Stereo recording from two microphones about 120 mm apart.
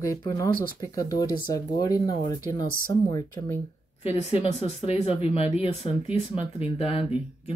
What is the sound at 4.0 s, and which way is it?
Speech, 55° left (ahead or behind).